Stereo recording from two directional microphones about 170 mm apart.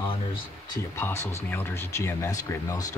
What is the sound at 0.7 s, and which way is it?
Speech, 15° left (ahead or behind).